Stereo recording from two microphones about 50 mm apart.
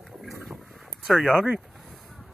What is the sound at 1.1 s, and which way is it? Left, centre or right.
Speech, centre.